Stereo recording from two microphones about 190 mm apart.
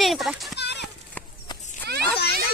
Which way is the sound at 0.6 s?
60° left (ahead or behind).